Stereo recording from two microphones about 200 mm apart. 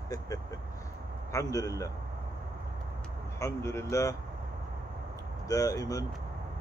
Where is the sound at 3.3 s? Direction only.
15° left (ahead or behind).